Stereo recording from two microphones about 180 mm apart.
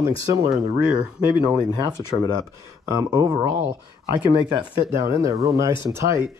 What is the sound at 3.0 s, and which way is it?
Speech, 15° right (ahead or behind).